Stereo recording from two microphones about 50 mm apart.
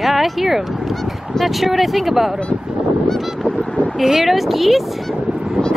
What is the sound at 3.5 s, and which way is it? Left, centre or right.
Speech, centre.